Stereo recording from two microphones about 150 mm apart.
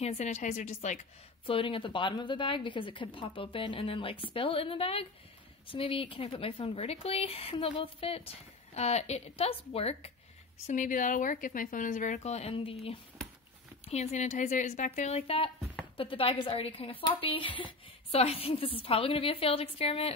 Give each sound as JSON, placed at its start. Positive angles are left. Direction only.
{"t": 0.0, "sound": "a woman's voice", "side_deg": 50}
{"t": 1.4, "sound": "speech", "side_deg": 35}
{"t": 10.7, "sound": "speech", "side_deg": 60}
{"t": 13.8, "sound": "a woman's voice", "side_deg": 50}